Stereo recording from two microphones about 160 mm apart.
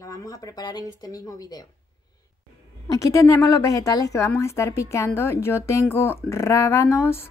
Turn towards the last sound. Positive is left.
turn(degrees=15)  # may be behind; listen again after turning